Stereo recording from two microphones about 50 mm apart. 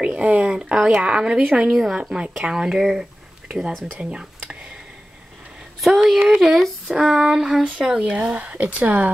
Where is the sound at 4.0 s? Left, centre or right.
Right.